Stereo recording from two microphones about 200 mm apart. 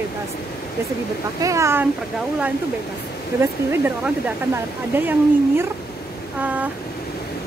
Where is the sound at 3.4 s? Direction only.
10° right (ahead or behind).